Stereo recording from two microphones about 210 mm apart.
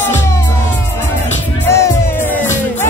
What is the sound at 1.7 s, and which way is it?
Music, 10° left (ahead or behind).